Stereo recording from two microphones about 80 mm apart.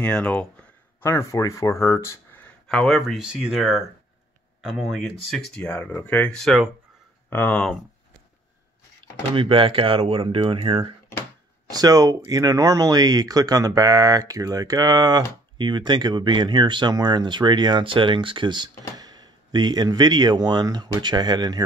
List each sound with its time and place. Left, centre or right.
0.0 s speech: centre
1.0 s speech: left
2.7 s speech: centre
5.9 s speech: centre
6.3 s speech: centre
7.2 s speech: left
9.3 s speech: right
11.7 s speech: right
15.5 s speech: right
16.9 s speech: right